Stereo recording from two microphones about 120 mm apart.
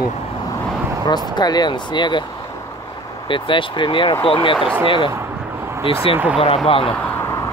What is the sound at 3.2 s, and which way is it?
Speech, 45° left (ahead or behind).